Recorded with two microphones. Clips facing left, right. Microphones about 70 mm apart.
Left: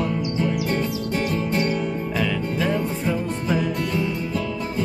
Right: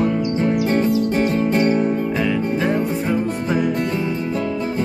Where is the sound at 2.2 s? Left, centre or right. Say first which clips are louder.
Right 4 dB; right.